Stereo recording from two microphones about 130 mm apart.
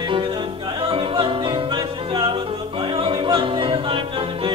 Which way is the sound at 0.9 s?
45° right (ahead or behind).